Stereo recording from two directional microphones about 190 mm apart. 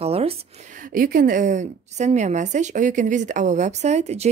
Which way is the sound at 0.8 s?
45° right (ahead or behind).